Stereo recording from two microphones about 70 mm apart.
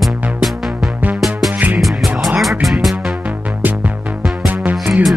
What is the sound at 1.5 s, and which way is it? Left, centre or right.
Music, right.